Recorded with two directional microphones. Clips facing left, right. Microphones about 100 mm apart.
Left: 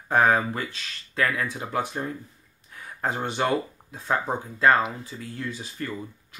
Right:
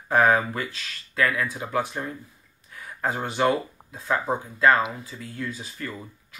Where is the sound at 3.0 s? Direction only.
30° left (ahead or behind).